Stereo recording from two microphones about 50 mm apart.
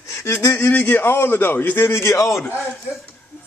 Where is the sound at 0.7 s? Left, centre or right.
Left.